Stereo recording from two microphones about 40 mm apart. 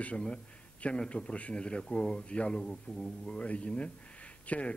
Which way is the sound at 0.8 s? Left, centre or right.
Left.